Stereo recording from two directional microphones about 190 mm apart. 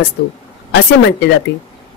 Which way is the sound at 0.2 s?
65° left (ahead or behind).